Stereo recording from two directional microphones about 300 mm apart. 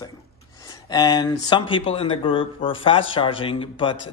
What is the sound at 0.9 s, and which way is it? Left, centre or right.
Speech, centre.